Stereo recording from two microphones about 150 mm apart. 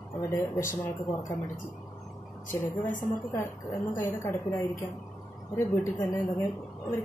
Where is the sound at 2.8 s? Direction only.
60° left (ahead or behind).